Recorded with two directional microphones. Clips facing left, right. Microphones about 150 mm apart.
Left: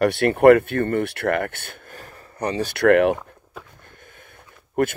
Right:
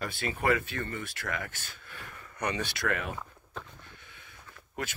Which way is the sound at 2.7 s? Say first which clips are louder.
Left 17 dB; 65° left (ahead or behind).